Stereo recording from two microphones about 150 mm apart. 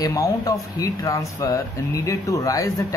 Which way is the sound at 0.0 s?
20° left (ahead or behind).